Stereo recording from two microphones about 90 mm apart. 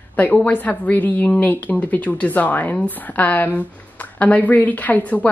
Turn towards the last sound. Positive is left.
turn(degrees=15)  # may be behind; listen again after turning